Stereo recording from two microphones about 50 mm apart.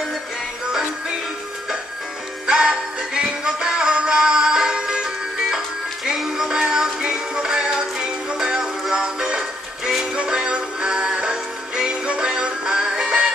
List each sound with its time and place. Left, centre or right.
2.4 s music: centre